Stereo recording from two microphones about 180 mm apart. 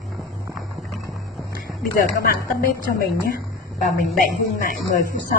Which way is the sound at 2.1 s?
60° left (ahead or behind).